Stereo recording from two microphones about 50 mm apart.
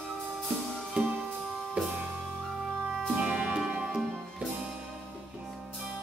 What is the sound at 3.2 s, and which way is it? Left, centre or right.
Music, right.